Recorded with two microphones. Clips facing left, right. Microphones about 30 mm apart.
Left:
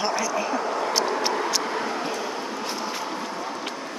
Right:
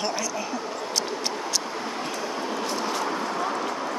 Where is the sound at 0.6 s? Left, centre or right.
Left.